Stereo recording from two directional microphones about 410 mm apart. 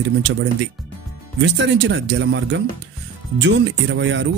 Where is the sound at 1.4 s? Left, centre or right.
Right.